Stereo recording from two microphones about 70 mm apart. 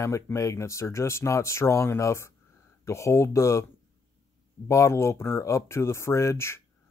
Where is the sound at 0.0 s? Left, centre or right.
Left.